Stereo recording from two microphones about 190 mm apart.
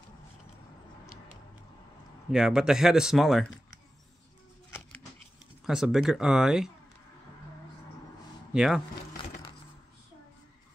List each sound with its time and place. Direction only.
2.3 s speech: 5° right (ahead or behind)
4.6 s a sound: 10° left (ahead or behind)
5.7 s speech: 5° right (ahead or behind)
8.5 s speech: centre (ahead or behind)